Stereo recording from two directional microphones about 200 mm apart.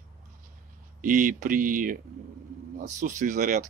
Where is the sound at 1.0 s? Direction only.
40° right (ahead or behind).